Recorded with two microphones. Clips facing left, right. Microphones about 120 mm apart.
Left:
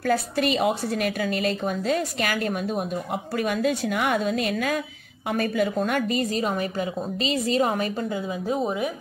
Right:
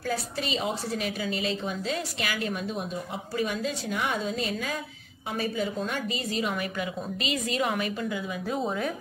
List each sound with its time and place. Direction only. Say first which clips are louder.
0.0 s a woman's voice: left 8 dB; 60° left (ahead or behind); by 8.2 s 40° left (ahead or behind)
8.6 s speech: left 3 dB; 10° left (ahead or behind)